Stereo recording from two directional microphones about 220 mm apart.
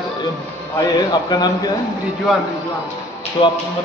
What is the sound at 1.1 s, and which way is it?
Speech, 20° left (ahead or behind).